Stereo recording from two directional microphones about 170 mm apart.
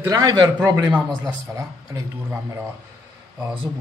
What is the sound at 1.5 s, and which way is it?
Speech, 20° right (ahead or behind).